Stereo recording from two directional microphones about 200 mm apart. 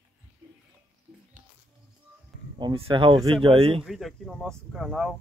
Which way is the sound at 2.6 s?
25° right (ahead or behind).